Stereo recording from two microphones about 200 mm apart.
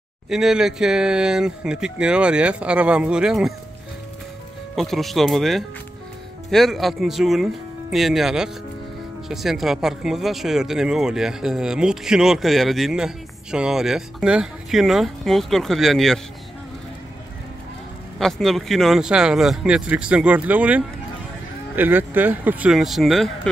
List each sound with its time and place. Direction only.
0.3 s speech: centre (ahead or behind)
4.7 s speech: centre (ahead or behind)
18.2 s speech: centre (ahead or behind)